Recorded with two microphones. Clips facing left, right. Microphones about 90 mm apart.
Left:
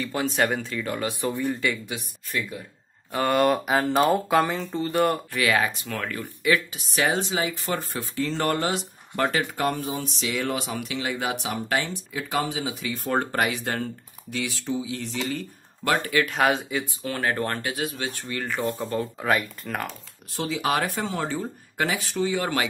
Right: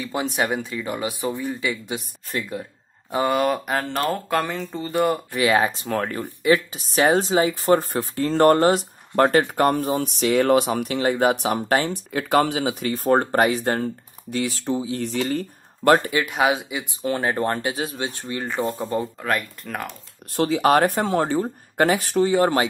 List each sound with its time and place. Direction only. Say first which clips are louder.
0.0 s speech: even; 15° right (ahead or behind)
1.9 s speech: right 4 dB; 35° right (ahead or behind)
3.3 s speech: left 2 dB; centre (ahead or behind)
5.3 s speech: right 4 dB; 25° right (ahead or behind); by 12.9 s 60° right (ahead or behind)
12.9 s speech: right 6 dB; 40° right (ahead or behind)
16.1 s speech: right 1 dB; 20° right (ahead or behind)
17.0 s speech: right 6 dB; 25° right (ahead or behind)
19.2 s speech: left 1 dB; centre (ahead or behind)
20.3 s speech: right 8 dB; 50° right (ahead or behind); by 22.7 s 35° right (ahead or behind)